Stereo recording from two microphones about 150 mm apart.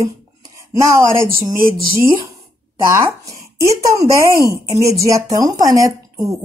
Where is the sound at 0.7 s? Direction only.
20° right (ahead or behind).